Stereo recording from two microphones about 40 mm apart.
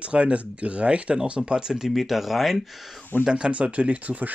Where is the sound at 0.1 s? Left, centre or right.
Right.